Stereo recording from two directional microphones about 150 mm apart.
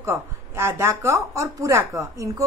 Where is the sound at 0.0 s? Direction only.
20° right (ahead or behind).